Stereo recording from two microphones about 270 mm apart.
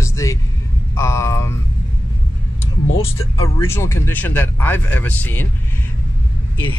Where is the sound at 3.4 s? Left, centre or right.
Centre.